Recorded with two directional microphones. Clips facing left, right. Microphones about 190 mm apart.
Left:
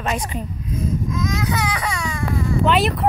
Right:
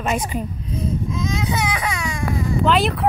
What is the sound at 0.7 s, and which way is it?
Baby cry, 30° right (ahead or behind).